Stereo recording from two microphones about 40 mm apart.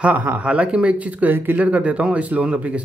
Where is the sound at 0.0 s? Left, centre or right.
Right.